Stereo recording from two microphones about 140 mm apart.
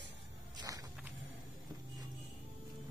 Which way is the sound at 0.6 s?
25° right (ahead or behind).